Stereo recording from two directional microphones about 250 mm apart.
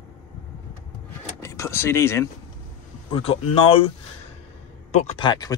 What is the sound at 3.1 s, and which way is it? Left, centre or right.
Speech, left.